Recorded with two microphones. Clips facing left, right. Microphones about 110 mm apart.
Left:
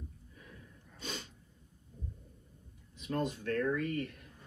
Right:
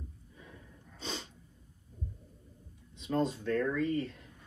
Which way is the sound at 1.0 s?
25° right (ahead or behind).